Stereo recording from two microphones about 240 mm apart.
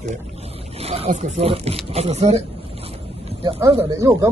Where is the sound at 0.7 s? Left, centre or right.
Right.